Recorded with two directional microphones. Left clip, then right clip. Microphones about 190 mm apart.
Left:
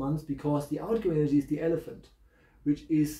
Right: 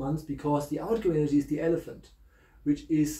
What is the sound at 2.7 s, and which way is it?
Speech, 15° left (ahead or behind).